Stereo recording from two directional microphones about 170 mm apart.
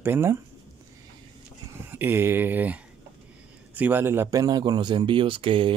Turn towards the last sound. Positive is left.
turn(degrees=-30)  # may be behind; listen again after turning